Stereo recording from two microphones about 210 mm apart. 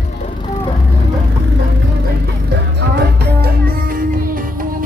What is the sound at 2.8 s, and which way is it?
Music, 50° right (ahead or behind).